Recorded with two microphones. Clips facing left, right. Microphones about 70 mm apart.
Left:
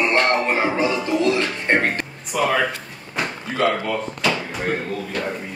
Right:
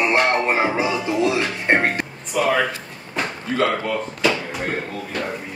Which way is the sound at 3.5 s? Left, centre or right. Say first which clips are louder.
Even; centre.